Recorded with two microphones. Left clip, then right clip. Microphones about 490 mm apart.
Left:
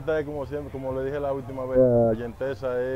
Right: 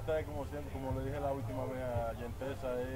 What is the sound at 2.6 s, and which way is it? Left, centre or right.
Speech, left.